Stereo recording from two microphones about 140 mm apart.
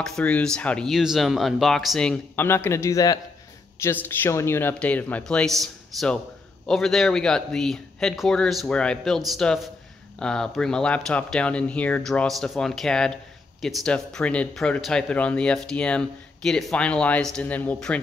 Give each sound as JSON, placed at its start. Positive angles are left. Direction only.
{"t": 0.0, "sound": "speech", "side_deg": 5}
{"t": 2.4, "sound": "speech", "side_deg": 15}